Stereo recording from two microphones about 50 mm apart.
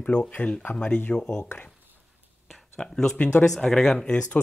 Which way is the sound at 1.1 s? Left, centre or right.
Centre.